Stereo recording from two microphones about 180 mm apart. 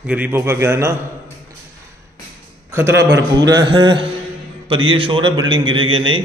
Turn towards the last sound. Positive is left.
turn(degrees=-30)  # may be behind; listen again after turning